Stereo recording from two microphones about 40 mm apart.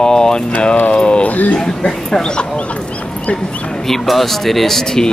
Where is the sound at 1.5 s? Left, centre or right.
Centre.